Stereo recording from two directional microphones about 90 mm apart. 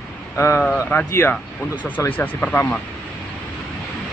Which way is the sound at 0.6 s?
10° left (ahead or behind).